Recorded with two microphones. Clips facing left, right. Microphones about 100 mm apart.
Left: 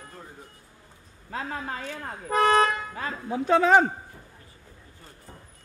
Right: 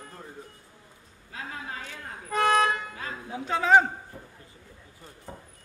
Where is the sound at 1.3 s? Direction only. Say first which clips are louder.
Left 5 dB; 45° left (ahead or behind).